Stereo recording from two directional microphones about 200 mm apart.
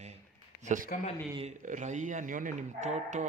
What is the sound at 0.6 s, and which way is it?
Speech, 40° right (ahead or behind).